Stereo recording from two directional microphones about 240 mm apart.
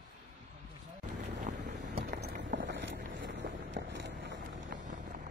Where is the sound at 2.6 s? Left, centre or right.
Right.